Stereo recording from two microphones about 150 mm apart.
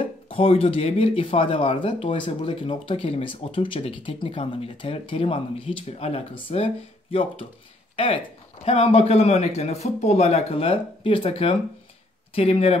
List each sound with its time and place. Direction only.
0.0 s speech: 35° left (ahead or behind)
7.9 s a sound: 35° left (ahead or behind)
8.6 s a man's voice: 40° left (ahead or behind)